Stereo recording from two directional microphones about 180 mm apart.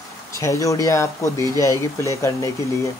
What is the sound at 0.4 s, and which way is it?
Speech, 15° left (ahead or behind).